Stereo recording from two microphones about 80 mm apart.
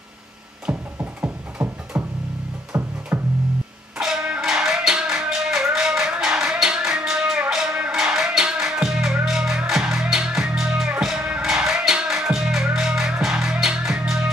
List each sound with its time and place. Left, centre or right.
0.9 s music: right
4.0 s music: centre